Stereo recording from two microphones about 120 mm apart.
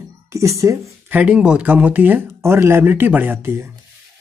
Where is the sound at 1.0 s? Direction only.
10° right (ahead or behind).